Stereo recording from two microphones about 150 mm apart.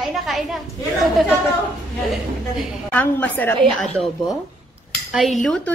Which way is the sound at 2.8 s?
10° left (ahead or behind).